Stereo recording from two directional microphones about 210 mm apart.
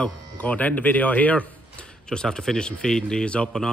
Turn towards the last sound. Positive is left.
turn(degrees=5)  # may be behind; listen again after turning